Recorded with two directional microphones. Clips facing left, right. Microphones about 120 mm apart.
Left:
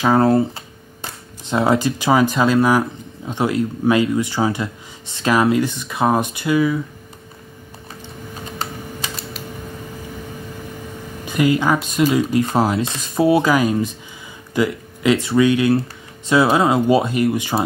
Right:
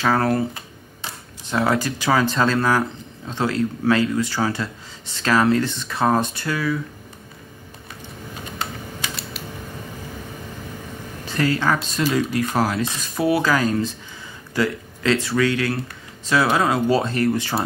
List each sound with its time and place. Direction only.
0.0 s speech: 20° left (ahead or behind)
8.5 s typing: 40° left (ahead or behind)
11.2 s speech: 15° left (ahead or behind)